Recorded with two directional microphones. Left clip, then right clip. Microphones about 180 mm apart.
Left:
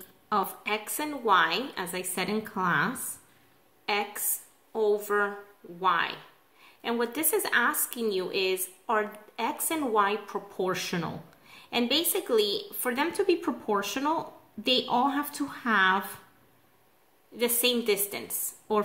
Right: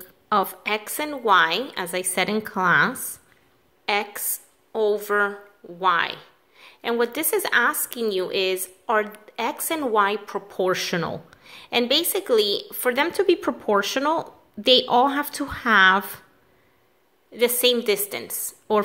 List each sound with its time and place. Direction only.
0.0 s a woman's voice: 40° right (ahead or behind)
17.4 s a woman's voice: 40° right (ahead or behind)